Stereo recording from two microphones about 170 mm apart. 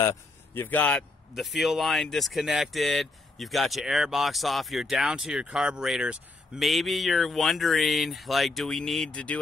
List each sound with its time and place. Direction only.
0.0 s speech: 20° left (ahead or behind)
0.7 s speech: 10° left (ahead or behind)